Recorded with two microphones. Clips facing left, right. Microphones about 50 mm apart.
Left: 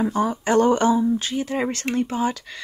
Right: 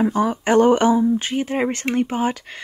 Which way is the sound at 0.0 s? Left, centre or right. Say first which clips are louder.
Right 3 dB; right.